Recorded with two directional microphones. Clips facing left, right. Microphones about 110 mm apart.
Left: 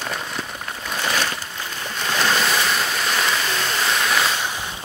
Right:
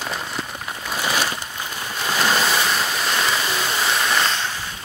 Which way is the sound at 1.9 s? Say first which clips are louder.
Right 1 dB; 5° right (ahead or behind).